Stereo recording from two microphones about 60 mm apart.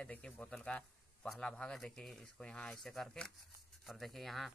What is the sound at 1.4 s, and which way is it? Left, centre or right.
Speech, centre.